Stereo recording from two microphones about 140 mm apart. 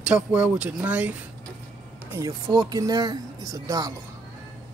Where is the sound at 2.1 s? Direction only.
25° right (ahead or behind).